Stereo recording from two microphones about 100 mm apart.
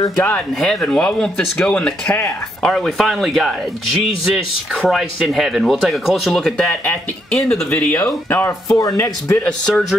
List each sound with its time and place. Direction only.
0.6 s speech: 5° left (ahead or behind)
4.8 s speech: centre (ahead or behind)
6.7 s speech: 15° left (ahead or behind)
7.3 s speech: 5° left (ahead or behind)
7.9 s speech: 20° left (ahead or behind)
8.6 s speech: 35° left (ahead or behind)
9.4 s speech: 10° left (ahead or behind)